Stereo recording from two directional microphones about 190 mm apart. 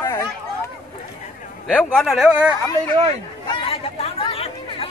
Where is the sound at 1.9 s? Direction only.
Centre (ahead or behind).